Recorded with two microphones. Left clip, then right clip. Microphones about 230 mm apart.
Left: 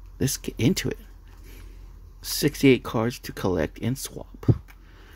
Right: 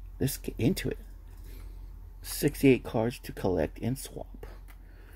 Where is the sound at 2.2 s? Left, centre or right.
Centre.